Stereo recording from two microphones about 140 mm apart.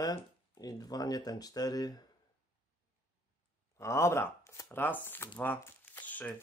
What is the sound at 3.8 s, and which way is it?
Speech, 20° left (ahead or behind).